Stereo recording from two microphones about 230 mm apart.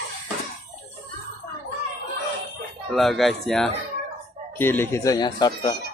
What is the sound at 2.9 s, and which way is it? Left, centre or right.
Speech, centre.